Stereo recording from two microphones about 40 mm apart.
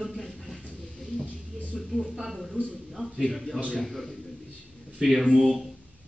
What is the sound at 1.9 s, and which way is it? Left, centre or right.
Speech, centre.